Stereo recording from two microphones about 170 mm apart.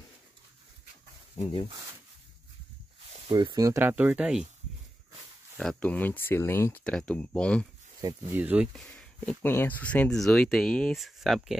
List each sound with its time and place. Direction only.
1.4 s speech: 35° left (ahead or behind)
3.1 s speech: 30° right (ahead or behind); by 4.5 s 5° right (ahead or behind)
5.6 s speech: 5° left (ahead or behind)
8.0 s speech: 20° right (ahead or behind)
8.4 s speech: 10° right (ahead or behind)
8.7 s speech: 5° left (ahead or behind)